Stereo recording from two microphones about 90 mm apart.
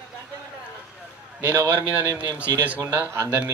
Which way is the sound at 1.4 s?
25° right (ahead or behind).